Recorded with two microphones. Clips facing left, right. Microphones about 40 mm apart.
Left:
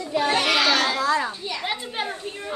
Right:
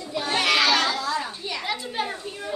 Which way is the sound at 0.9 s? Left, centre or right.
Left.